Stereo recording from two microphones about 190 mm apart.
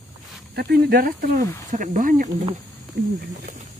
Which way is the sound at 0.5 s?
55° right (ahead or behind).